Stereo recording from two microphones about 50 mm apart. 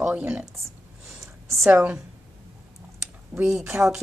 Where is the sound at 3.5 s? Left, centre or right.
Centre.